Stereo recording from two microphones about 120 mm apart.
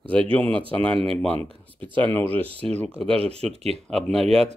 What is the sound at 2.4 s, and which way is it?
Speech, 50° right (ahead or behind).